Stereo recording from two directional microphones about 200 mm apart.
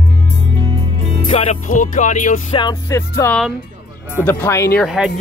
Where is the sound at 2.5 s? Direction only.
20° left (ahead or behind).